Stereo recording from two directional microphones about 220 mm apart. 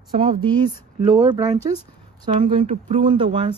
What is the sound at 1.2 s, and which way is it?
Speech, 15° right (ahead or behind).